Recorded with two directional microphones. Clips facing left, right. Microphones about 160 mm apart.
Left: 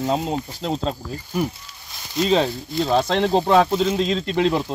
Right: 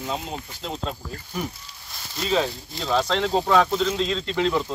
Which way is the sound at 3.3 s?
25° left (ahead or behind).